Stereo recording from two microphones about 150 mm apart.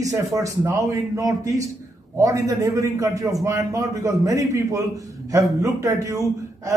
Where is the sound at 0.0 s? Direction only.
20° right (ahead or behind).